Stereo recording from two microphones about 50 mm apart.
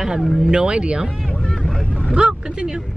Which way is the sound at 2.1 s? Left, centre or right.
Centre.